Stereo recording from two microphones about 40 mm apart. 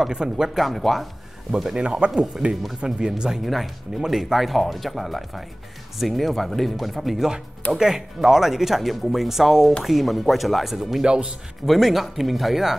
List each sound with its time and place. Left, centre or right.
0.1 s speech: centre
0.6 s speech: centre
1.5 s speech: centre
1.8 s speech: right
2.5 s speech: centre
11.1 s speech: right
11.6 s speech: centre